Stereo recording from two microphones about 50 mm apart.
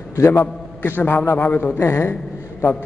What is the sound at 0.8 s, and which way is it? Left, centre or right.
A man's voice, left.